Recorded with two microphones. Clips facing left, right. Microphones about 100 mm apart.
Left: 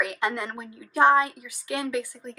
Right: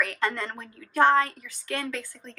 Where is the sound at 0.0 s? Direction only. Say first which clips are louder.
Left 1 dB; 15° left (ahead or behind).